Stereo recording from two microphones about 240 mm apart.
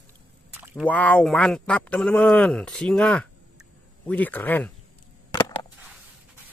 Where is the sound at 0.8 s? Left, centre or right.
Centre.